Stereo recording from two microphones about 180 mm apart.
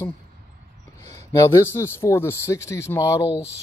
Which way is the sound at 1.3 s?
15° left (ahead or behind).